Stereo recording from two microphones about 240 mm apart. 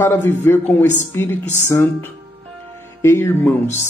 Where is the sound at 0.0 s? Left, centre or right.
Centre.